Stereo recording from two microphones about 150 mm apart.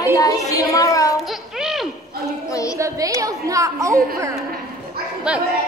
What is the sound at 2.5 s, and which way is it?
Speech, 20° left (ahead or behind).